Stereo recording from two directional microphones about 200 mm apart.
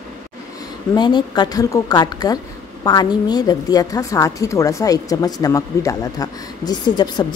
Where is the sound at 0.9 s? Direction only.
20° left (ahead or behind).